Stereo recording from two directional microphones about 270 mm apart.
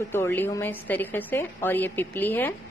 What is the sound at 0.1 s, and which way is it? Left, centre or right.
A woman's voice, centre.